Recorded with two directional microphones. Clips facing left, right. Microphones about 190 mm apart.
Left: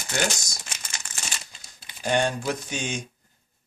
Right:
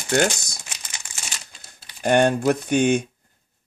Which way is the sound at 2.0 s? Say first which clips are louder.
Right 7 dB; 60° right (ahead or behind).